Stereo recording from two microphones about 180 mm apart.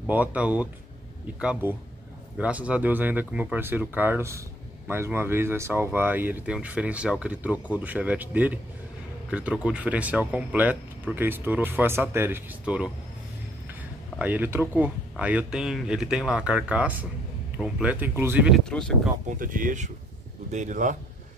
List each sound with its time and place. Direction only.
0.0 s speech: 10° right (ahead or behind)
14.1 s speech: 10° right (ahead or behind)
19.2 s speech: 50° right (ahead or behind)